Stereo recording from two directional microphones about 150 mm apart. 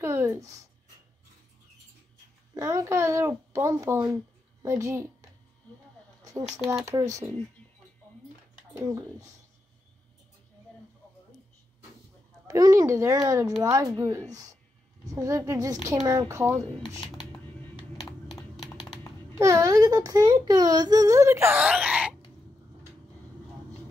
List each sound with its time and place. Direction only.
0.0 s speech: 15° right (ahead or behind)
2.5 s speech: 20° right (ahead or behind)
6.7 s speech: 20° right (ahead or behind)
8.7 s speech: 20° right (ahead or behind)
12.4 s speech: 25° right (ahead or behind)
16.7 s speech: centre (ahead or behind)
18.3 s typing: centre (ahead or behind)
19.3 s speech: 20° right (ahead or behind)
21.6 s groan: 5° right (ahead or behind)